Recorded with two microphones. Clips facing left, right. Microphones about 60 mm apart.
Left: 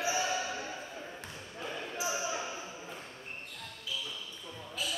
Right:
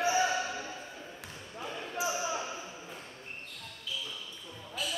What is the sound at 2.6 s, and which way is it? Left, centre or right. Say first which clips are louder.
Ping: left 1 dB; centre.